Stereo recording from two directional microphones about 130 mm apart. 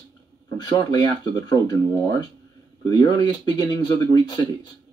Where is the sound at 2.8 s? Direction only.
35° left (ahead or behind).